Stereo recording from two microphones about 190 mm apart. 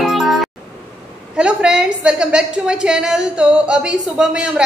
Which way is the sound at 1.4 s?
5° right (ahead or behind).